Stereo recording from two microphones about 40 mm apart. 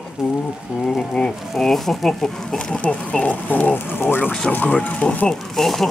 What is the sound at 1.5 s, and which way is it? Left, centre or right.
Speech, centre.